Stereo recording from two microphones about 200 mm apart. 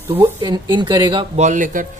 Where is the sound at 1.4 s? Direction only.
40° right (ahead or behind).